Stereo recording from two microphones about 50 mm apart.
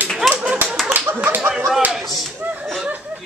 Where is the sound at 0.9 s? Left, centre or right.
Right.